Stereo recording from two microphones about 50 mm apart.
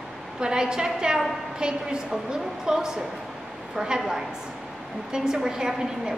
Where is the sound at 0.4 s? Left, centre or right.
Centre.